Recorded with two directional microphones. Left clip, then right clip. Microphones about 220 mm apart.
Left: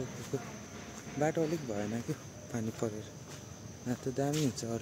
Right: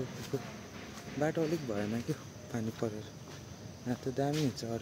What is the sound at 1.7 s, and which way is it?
Speech, 10° right (ahead or behind).